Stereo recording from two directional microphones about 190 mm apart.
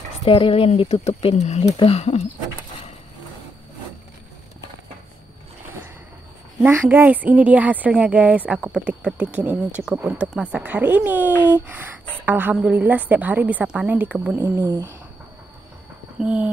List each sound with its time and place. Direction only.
0.2 s speech: 30° left (ahead or behind)
6.6 s speech: 10° right (ahead or behind)
14.6 s speech: 20° right (ahead or behind)
16.2 s speech: 5° right (ahead or behind)